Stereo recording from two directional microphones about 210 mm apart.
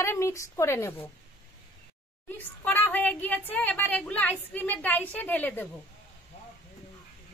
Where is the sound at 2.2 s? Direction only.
10° left (ahead or behind).